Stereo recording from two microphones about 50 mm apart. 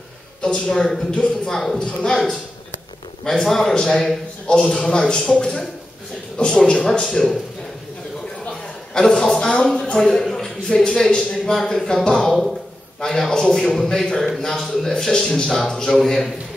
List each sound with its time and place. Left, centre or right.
0.4 s a man's voice: centre
8.9 s a man's voice: centre
9.8 s a sound: centre
11.1 s a man's voice: centre